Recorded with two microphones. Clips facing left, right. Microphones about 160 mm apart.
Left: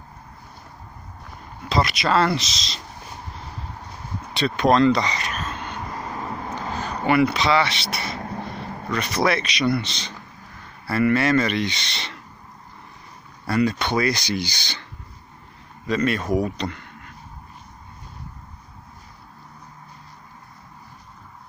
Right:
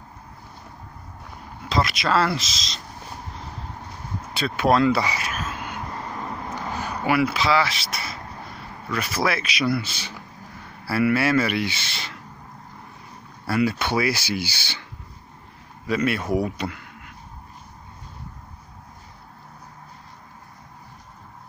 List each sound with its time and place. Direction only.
1.7 s speech: centre (ahead or behind)
4.3 s speech: 5° right (ahead or behind)
8.4 s a sound: 25° left (ahead or behind)
8.9 s speech: 5° right (ahead or behind)
13.5 s speech: 5° right (ahead or behind)
15.9 s speech: 10° right (ahead or behind)